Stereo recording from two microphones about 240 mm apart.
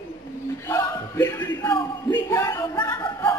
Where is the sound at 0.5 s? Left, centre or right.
Centre.